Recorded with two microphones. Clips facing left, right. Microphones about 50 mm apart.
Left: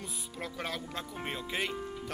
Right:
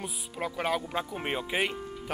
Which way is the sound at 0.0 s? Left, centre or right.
Centre.